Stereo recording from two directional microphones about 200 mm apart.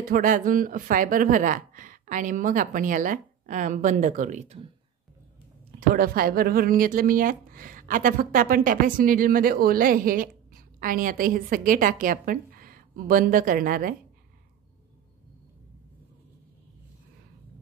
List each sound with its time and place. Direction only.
0.1 s a woman's voice: 40° right (ahead or behind)
5.8 s speech: 45° right (ahead or behind)